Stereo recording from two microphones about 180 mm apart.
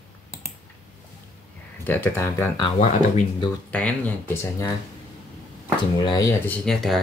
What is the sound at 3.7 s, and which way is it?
Speech, 10° left (ahead or behind).